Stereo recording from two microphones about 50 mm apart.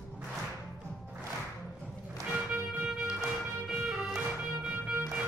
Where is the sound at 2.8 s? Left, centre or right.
Centre.